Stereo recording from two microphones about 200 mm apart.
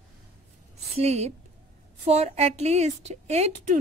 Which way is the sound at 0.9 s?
30° right (ahead or behind).